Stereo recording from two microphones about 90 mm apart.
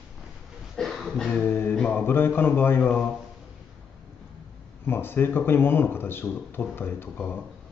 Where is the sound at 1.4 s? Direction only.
25° left (ahead or behind).